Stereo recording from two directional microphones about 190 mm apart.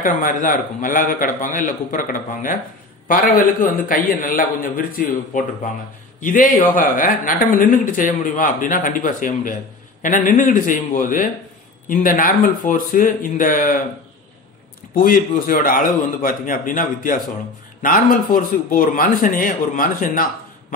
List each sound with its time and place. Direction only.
0.0 s a man's voice: 45° left (ahead or behind)
3.9 s a man's voice: 45° left (ahead or behind)
15.0 s a man's voice: 45° left (ahead or behind)